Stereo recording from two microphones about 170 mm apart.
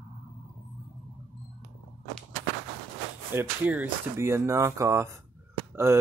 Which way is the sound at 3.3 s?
10° right (ahead or behind).